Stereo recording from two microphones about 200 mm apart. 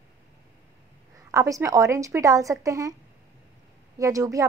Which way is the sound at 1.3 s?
15° right (ahead or behind).